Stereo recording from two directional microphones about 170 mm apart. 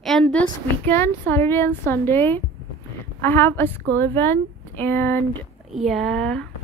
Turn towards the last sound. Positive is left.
turn(degrees=5)  # may be behind; listen again after turning